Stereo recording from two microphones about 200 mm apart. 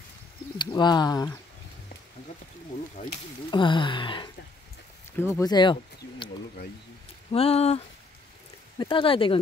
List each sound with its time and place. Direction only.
0.6 s speech: 20° left (ahead or behind)
3.4 s speech: 25° left (ahead or behind)
7.3 s speech: 30° left (ahead or behind)